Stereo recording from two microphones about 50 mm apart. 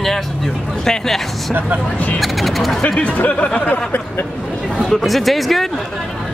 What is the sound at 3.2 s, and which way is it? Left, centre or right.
Speech, left.